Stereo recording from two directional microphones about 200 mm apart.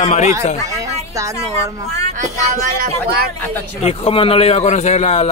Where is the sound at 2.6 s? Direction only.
45° right (ahead or behind).